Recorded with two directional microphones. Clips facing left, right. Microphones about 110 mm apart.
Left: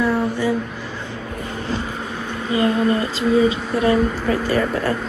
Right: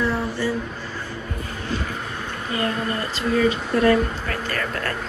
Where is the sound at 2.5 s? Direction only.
20° left (ahead or behind).